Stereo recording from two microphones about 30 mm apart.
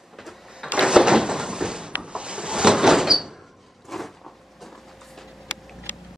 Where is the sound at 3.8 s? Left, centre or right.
Centre.